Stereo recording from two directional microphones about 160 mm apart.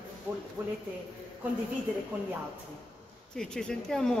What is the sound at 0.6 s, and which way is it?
Speech, 15° right (ahead or behind).